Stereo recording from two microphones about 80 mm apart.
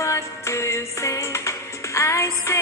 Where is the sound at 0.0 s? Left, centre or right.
Left.